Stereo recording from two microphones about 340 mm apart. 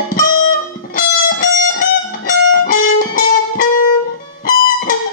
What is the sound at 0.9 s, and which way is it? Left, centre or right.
Music, left.